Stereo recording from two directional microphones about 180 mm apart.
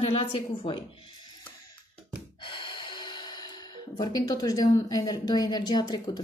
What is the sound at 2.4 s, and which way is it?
Gasp, 25° left (ahead or behind).